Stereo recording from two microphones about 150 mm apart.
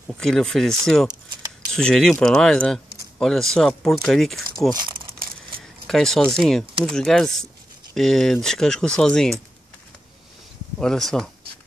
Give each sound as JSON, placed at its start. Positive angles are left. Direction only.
{"t": 0.2, "sound": "speech", "side_deg": 5}
{"t": 4.7, "sound": "speech", "side_deg": -35}
{"t": 5.9, "sound": "speech", "side_deg": 0}
{"t": 10.8, "sound": "speech", "side_deg": 5}